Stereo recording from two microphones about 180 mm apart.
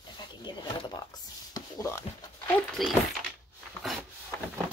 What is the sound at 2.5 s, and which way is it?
Speech, centre (ahead or behind).